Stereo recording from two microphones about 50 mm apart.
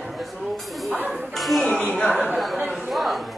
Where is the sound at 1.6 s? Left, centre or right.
Left.